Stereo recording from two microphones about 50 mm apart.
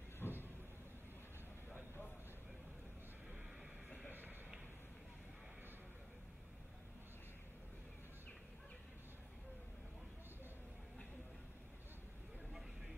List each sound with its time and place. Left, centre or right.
0.2 s vehicle: left